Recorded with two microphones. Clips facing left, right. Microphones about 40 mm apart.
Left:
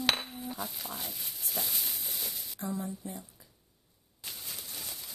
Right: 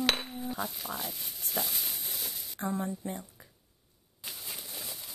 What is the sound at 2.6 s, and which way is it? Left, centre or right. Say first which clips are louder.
Speech: right 4 dB; right.